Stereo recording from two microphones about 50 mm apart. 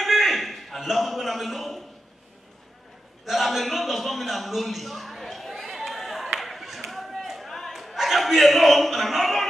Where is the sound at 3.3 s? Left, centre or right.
Centre.